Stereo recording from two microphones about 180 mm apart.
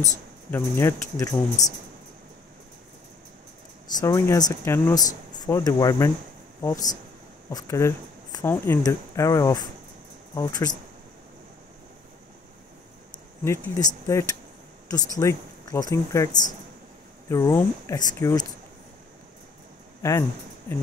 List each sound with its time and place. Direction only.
0.5 s speech: 15° left (ahead or behind)
3.8 s speech: 20° left (ahead or behind)
13.4 s speech: 15° left (ahead or behind)
17.3 s speech: 15° left (ahead or behind)
20.0 s speech: 15° left (ahead or behind)